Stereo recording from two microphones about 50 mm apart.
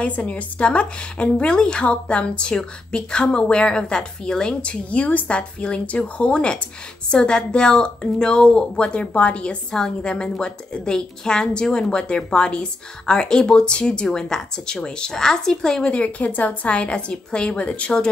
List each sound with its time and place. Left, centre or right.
0.0 s a woman's voice: left; by 15.8 s centre
15.8 s speech: left